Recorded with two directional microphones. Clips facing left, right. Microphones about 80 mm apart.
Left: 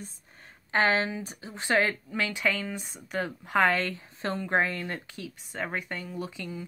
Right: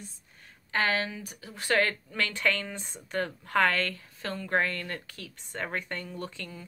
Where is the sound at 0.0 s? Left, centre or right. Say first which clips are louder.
Left 3 dB; left.